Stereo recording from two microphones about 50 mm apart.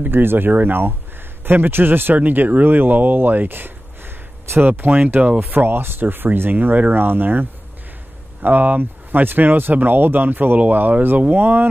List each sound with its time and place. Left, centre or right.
0.0 s speech: right
6.5 s speech: right